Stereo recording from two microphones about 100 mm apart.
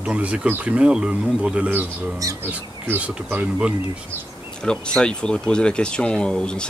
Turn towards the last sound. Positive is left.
turn(degrees=10)  # may be behind; listen again after turning